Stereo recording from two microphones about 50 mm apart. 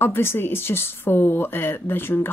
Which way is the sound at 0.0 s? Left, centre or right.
Left.